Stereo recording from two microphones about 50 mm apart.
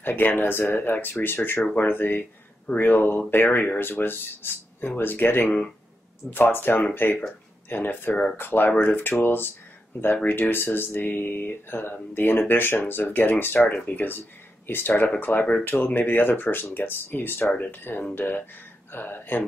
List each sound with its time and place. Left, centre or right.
0.0 s speech: left